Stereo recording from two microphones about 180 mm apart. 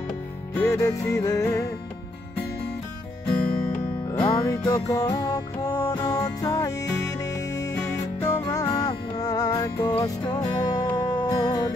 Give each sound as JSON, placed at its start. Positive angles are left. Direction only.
{"t": 0.7, "sound": "music", "side_deg": 15}
{"t": 3.3, "sound": "music", "side_deg": 5}
{"t": 4.1, "sound": "music", "side_deg": 25}
{"t": 8.5, "sound": "music", "side_deg": 20}